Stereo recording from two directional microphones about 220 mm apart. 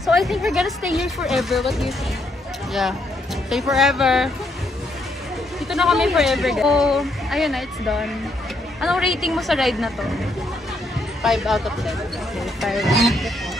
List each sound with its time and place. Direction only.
0.0 s speech: centre (ahead or behind)
3.7 s speech: centre (ahead or behind)
5.7 s speech: centre (ahead or behind)
11.2 s speech: centre (ahead or behind)